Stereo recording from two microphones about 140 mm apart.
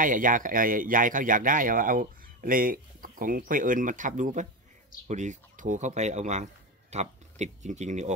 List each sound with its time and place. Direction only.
0.0 s speech: 75° right (ahead or behind); by 8.1 s 55° right (ahead or behind)